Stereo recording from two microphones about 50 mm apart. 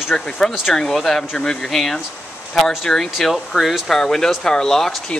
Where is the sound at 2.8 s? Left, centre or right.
Centre.